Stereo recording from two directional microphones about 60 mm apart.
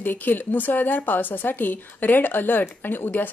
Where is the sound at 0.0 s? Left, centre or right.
Left.